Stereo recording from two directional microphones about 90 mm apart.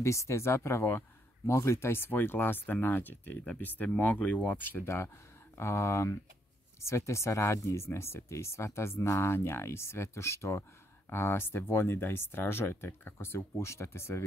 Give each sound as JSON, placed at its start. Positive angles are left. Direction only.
{"t": 0.0, "sound": "speech", "side_deg": 35}